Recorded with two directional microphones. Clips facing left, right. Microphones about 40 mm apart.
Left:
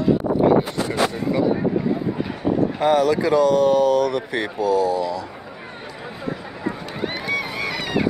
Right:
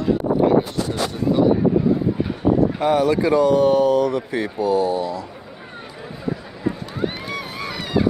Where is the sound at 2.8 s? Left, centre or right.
Left.